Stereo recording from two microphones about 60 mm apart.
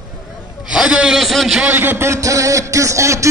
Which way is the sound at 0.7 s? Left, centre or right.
Centre.